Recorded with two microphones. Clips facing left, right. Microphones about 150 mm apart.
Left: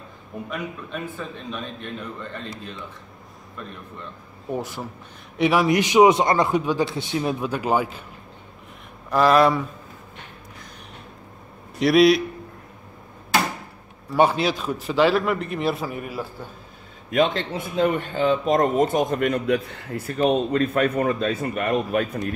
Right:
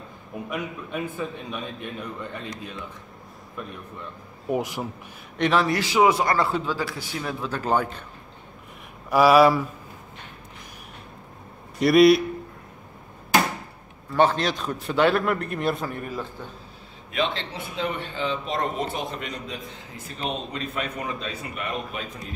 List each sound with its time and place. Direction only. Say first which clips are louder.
0.5 s a man's voice: right 1 dB; 15° right (ahead or behind)
4.5 s a man's voice: right 2 dB; 15° right (ahead or behind)
5.4 s a man's voice: left 3 dB; 10° left (ahead or behind)
9.1 s a man's voice: right 1 dB; 5° right (ahead or behind)
11.8 s a man's voice: even; centre (ahead or behind)
14.1 s a man's voice: left 2 dB; 10° left (ahead or behind)
17.1 s a man's voice: left 6 dB; 45° left (ahead or behind)